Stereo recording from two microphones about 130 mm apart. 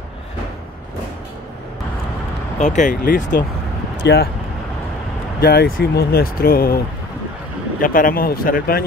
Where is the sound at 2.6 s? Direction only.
70° left (ahead or behind); by 3.4 s 90° left.